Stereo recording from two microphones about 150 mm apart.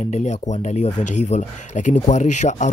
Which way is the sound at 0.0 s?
50° left (ahead or behind).